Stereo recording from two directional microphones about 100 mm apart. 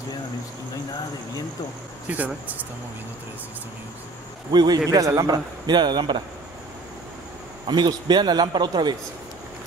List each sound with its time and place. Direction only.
2.0 s speech: 15° right (ahead or behind)
4.5 s a man's voice: 45° right (ahead or behind)
7.6 s a man's voice: 50° right (ahead or behind)